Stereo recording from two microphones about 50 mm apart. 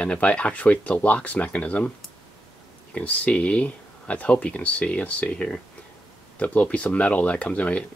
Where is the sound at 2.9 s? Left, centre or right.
Left.